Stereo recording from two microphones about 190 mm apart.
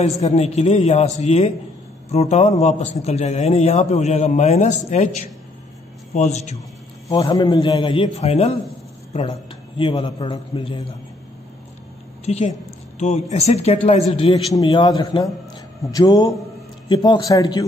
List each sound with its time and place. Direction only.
0.0 s a man's voice: 35° left (ahead or behind)
7.2 s a man's voice: 25° left (ahead or behind)
12.3 s a man's voice: 35° left (ahead or behind); by 17.6 s 20° left (ahead or behind)